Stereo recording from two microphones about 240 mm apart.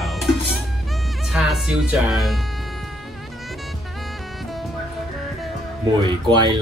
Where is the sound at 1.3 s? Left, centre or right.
Centre.